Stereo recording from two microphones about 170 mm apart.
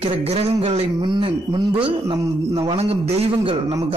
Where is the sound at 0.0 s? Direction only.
35° right (ahead or behind).